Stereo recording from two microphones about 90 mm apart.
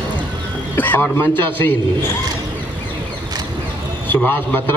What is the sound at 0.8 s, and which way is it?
Speech, 20° left (ahead or behind).